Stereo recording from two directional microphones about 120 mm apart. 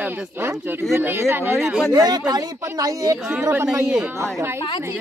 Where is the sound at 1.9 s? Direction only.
35° right (ahead or behind).